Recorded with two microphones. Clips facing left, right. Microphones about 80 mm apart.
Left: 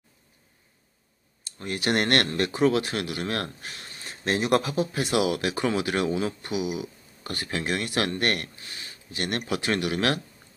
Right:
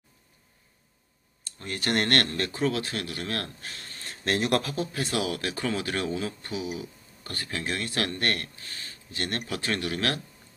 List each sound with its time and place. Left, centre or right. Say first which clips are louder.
1.6 s speech: left 2 dB; centre